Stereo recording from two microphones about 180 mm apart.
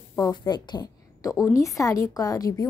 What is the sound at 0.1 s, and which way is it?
A woman's voice, 20° left (ahead or behind).